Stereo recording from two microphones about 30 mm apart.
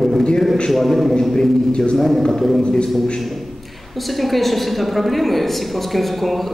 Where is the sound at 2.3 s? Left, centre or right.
Centre.